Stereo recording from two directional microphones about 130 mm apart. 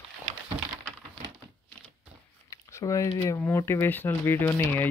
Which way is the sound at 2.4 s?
25° left (ahead or behind).